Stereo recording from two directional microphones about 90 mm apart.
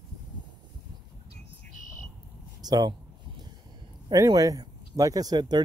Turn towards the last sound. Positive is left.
turn(degrees=-50)  # may be behind; listen again after turning